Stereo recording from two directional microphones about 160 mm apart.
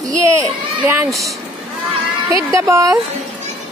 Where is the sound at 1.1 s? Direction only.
Centre (ahead or behind).